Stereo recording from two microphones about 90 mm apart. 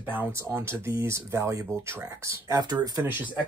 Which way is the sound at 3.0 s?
20° right (ahead or behind).